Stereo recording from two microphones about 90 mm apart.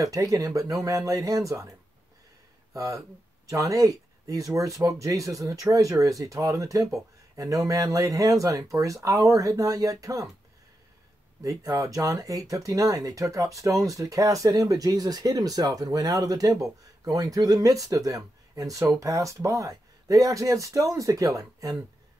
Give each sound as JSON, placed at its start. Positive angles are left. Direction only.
{"t": 0.0, "sound": "speech", "side_deg": -40}
{"t": 2.7, "sound": "speech", "side_deg": -40}
{"t": 11.4, "sound": "speech", "side_deg": -40}